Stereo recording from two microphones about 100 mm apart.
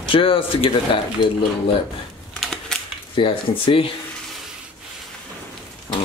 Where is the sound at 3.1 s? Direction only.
65° left (ahead or behind).